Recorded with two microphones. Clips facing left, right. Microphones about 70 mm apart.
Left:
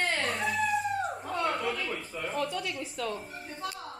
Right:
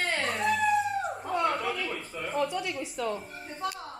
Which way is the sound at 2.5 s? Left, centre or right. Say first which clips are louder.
Right 2 dB; centre.